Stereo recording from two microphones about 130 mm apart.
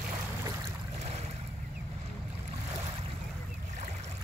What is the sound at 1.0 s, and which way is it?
Boat, 55° right (ahead or behind).